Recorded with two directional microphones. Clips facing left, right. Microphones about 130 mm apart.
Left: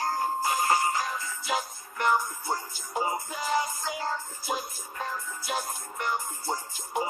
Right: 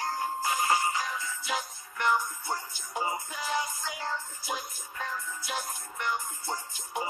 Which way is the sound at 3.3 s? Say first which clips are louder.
Left 4 dB; 40° left (ahead or behind).